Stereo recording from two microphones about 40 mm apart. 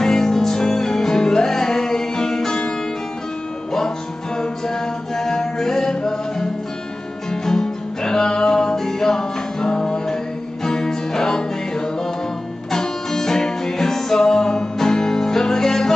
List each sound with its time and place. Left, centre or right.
0.0 s music: centre
4.4 s music: centre